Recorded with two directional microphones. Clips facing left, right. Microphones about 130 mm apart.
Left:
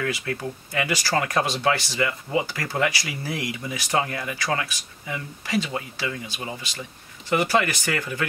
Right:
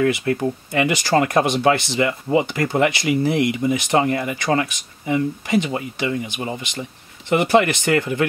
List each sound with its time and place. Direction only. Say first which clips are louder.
0.0 s speech: right 9 dB; 30° right (ahead or behind)